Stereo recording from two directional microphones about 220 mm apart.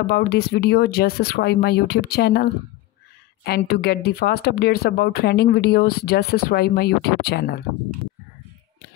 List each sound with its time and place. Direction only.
0.0 s speech: 45° left (ahead or behind)